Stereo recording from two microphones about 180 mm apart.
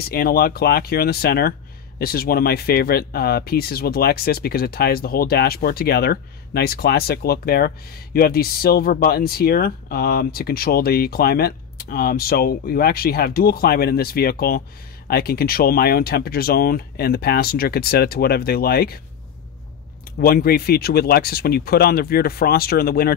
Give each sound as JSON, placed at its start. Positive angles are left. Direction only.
{"t": 0.1, "sound": "speech", "side_deg": 55}
{"t": 20.2, "sound": "speech", "side_deg": 55}